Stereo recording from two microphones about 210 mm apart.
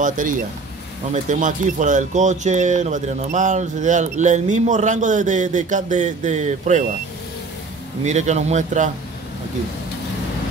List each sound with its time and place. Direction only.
0.0 s speech: 40° right (ahead or behind)
8.0 s speech: 35° right (ahead or behind)